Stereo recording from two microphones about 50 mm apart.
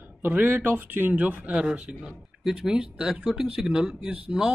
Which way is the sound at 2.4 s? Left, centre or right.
Centre.